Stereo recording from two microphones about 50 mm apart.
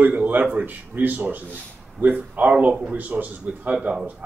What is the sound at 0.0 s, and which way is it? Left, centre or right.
A man's voice, right.